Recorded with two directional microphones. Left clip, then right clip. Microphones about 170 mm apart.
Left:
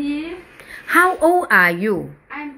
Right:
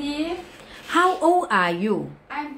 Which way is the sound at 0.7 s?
15° left (ahead or behind).